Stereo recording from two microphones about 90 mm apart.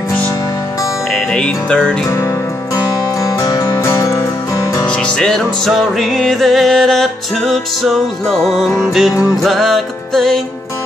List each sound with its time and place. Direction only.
1.1 s music: 10° left (ahead or behind)
2.0 s music: 35° left (ahead or behind)
3.6 s music: 30° left (ahead or behind)
4.8 s music: 10° left (ahead or behind)